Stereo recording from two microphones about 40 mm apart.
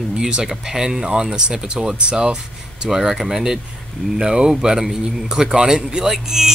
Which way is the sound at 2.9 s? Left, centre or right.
Centre.